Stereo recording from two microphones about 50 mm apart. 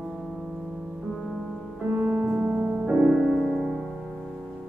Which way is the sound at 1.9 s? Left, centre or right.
Right.